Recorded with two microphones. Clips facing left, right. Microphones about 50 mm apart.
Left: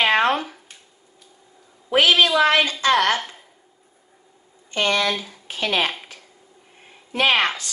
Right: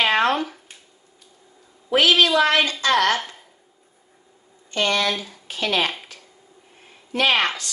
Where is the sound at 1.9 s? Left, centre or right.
Centre.